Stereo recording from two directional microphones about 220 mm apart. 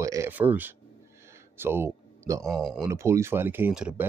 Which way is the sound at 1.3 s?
10° right (ahead or behind).